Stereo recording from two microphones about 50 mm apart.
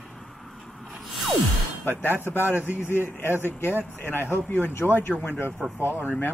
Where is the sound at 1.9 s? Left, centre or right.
Left.